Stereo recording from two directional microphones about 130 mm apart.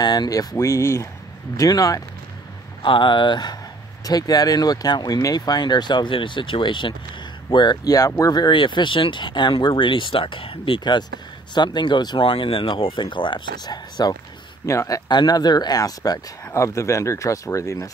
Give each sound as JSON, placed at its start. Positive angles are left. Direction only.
{"t": 0.0, "sound": "speech", "side_deg": 30}
{"t": 2.8, "sound": "speech", "side_deg": 40}